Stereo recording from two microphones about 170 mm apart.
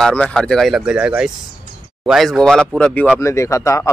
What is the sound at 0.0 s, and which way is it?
Speech, 5° left (ahead or behind).